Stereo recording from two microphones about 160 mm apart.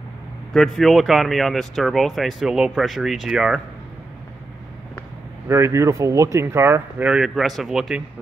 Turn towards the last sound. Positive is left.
turn(degrees=0)  # may be behind; listen again after turning